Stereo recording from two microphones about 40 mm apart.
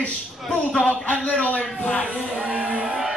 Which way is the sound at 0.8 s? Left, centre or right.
Left.